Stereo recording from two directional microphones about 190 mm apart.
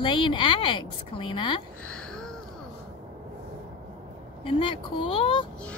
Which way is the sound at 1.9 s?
5° left (ahead or behind).